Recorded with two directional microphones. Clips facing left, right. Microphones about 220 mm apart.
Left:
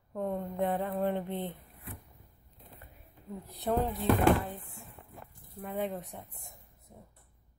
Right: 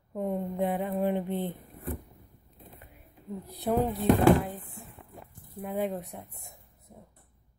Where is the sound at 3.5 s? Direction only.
5° right (ahead or behind).